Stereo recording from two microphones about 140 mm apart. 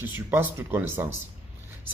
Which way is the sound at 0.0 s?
15° right (ahead or behind).